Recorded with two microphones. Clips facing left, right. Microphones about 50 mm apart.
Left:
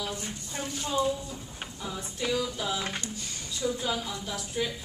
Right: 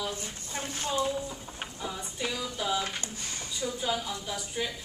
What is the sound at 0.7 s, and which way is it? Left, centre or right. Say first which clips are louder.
Speech: left 1 dB; right.